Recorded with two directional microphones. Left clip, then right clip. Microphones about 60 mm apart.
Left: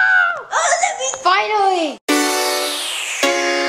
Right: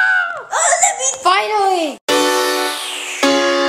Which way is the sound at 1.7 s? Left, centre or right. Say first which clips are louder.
Right 1 dB; centre.